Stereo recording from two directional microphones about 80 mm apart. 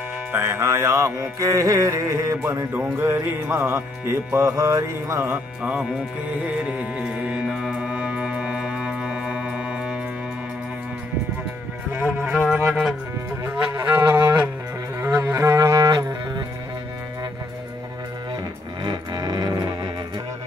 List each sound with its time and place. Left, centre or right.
0.3 s music: right
2.7 s music: right
5.6 s speech: centre
6.4 s music: centre
7.4 s music: centre
12.6 s speech: centre
13.4 s music: centre
15.0 s music: right
18.9 s music: right